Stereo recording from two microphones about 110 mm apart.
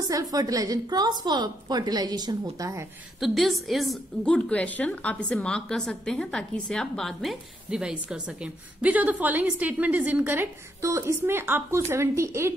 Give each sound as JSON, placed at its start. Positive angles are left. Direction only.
{"t": 0.1, "sound": "a woman's voice", "side_deg": -35}
{"t": 3.2, "sound": "a woman's voice", "side_deg": 0}
{"t": 4.2, "sound": "a woman's voice", "side_deg": 10}